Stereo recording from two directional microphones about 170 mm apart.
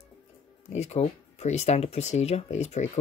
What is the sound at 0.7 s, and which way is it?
Speech, 40° left (ahead or behind).